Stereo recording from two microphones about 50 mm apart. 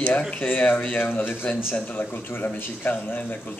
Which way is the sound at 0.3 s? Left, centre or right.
Left.